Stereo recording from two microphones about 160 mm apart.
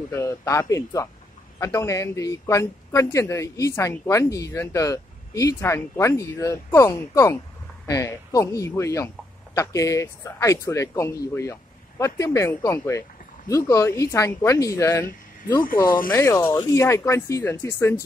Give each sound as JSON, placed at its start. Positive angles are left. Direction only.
{"t": 0.1, "sound": "a man's voice", "side_deg": 20}
{"t": 15.6, "sound": "speech", "side_deg": 60}
{"t": 16.1, "sound": "speech", "side_deg": 15}